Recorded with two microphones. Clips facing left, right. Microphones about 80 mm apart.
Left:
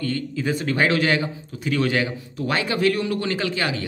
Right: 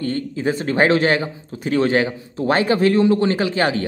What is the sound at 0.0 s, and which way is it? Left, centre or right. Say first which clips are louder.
A man's voice: right 4 dB; right.